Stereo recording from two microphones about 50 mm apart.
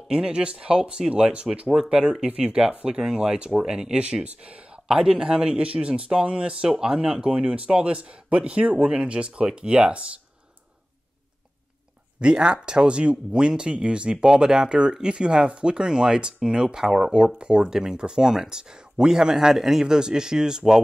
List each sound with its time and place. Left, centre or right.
0.1 s a man's voice: centre
1.7 s speech: centre
2.2 s a man's voice: right
4.0 s a man's voice: right
12.2 s speech: centre